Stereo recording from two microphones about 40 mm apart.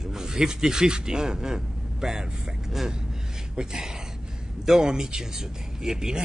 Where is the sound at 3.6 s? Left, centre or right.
Centre.